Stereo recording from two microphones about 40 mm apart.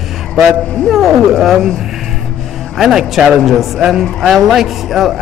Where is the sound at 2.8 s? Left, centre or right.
Centre.